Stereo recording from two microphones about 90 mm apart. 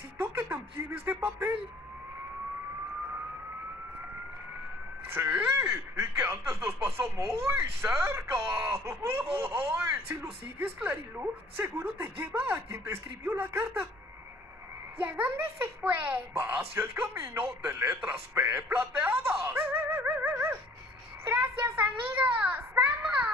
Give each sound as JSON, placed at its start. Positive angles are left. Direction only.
{"t": 0.2, "sound": "a child's voice", "side_deg": -25}
{"t": 5.1, "sound": "a child's voice", "side_deg": -20}
{"t": 15.0, "sound": "a child's voice", "side_deg": -25}
{"t": 21.3, "sound": "a sound", "side_deg": -20}